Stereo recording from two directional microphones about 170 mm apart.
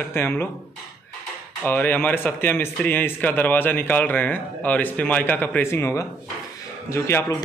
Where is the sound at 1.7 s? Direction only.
10° left (ahead or behind).